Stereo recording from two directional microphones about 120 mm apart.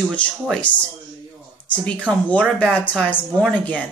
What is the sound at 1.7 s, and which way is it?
Speech, 10° left (ahead or behind).